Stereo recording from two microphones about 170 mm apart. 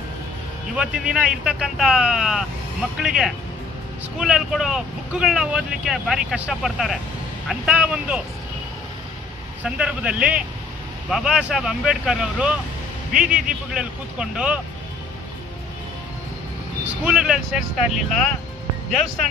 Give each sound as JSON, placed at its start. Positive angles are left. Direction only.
{"t": 0.7, "sound": "speech", "side_deg": -5}
{"t": 9.6, "sound": "speech", "side_deg": -5}
{"t": 16.8, "sound": "speech", "side_deg": -5}